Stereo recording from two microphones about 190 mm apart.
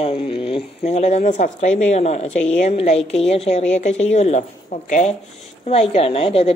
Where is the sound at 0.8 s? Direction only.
35° left (ahead or behind).